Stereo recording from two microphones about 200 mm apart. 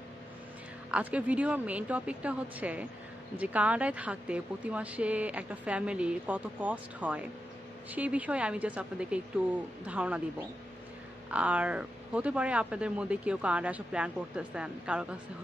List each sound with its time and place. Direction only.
0.9 s speech: 5° right (ahead or behind)
11.2 s speech: 5° right (ahead or behind)